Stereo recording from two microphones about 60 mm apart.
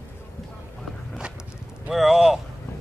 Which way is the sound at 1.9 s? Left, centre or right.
Centre.